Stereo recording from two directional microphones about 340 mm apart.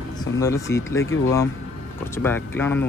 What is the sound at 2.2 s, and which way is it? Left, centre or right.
Speech, centre.